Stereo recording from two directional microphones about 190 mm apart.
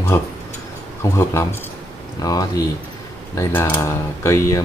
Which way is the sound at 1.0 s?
15° left (ahead or behind).